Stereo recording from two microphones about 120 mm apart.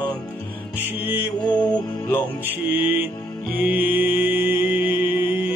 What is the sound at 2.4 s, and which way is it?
Music, 15° right (ahead or behind).